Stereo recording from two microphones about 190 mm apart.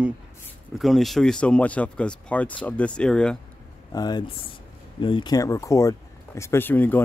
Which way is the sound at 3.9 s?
20° left (ahead or behind).